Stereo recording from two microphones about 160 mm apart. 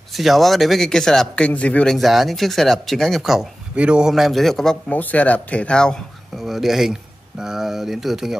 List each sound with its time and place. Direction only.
0.1 s speech: centre (ahead or behind)